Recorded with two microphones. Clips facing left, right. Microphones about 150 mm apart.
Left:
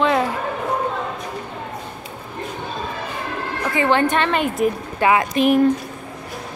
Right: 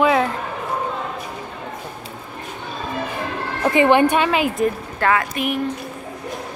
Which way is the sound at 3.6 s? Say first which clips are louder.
Right 4 dB; 20° right (ahead or behind).